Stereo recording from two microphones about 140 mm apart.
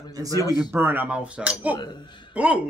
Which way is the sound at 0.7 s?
15° right (ahead or behind).